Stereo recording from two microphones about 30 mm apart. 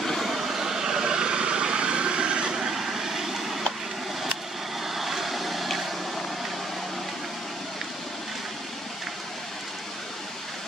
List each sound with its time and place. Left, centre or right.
0.0 s vehicle: centre; by 2.7 s right
2.7 s vehicle: centre
4.8 s vehicle: centre